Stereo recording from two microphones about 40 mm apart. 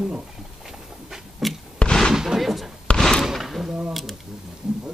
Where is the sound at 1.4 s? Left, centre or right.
Centre.